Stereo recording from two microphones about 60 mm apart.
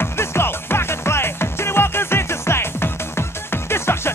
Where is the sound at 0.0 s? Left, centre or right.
Left.